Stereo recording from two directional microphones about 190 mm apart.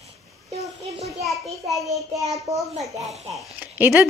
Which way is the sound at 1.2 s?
Centre (ahead or behind).